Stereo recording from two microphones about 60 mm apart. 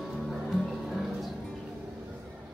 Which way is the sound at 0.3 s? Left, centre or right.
Centre.